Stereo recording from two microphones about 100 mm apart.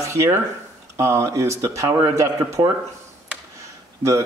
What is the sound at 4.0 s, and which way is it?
Speech, 30° right (ahead or behind).